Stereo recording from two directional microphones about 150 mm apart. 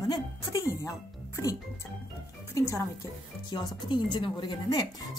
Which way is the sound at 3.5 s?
30° left (ahead or behind).